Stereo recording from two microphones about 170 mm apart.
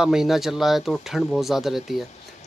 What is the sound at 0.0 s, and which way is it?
Speech, 5° right (ahead or behind).